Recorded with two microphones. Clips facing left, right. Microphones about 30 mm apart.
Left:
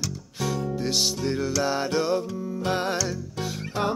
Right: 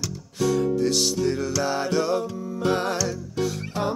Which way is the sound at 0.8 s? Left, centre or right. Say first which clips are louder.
Right 3 dB; centre.